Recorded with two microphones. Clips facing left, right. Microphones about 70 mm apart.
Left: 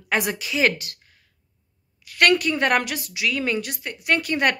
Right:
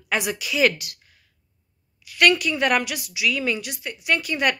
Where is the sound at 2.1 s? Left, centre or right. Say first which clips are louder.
Even; left.